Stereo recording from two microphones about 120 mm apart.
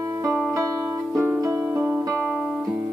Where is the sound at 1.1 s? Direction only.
25° right (ahead or behind).